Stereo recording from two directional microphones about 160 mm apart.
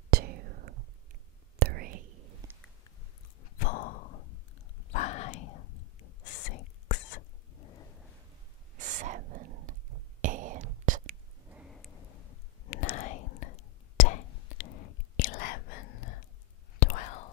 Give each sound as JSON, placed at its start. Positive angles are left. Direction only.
{"t": 0.1, "sound": "whispering", "side_deg": -70}
{"t": 2.4, "sound": "a sound", "side_deg": -20}
{"t": 3.5, "sound": "sigh", "side_deg": 60}
{"t": 4.9, "sound": "whispering", "side_deg": 45}
{"t": 6.4, "sound": "whispering", "side_deg": 50}
{"t": 8.7, "sound": "whispering", "side_deg": -50}
{"t": 11.5, "sound": "a sound", "side_deg": 0}
{"t": 12.8, "sound": "whispering", "side_deg": 45}
{"t": 16.8, "sound": "whispering", "side_deg": 55}